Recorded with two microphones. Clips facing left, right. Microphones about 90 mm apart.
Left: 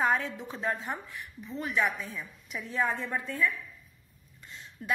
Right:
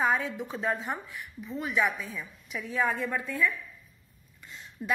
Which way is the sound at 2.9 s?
20° left (ahead or behind).